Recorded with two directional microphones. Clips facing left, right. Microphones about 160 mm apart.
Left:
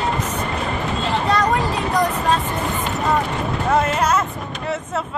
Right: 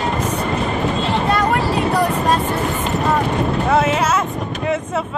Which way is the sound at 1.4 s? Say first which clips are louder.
Right 2 dB; 10° right (ahead or behind).